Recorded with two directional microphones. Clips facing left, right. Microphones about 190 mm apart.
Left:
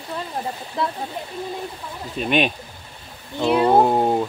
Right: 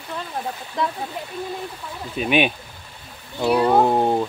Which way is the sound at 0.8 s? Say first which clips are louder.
Even; 5° left (ahead or behind).